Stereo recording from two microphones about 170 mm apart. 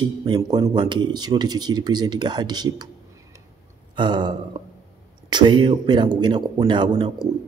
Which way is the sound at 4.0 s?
25° right (ahead or behind).